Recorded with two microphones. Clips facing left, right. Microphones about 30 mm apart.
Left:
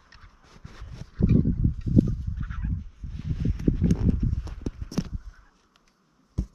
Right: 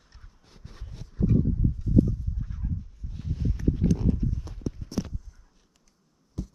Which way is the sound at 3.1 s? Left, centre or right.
Left.